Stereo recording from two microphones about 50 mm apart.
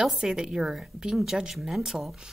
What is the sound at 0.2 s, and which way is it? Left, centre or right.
A woman's voice, centre.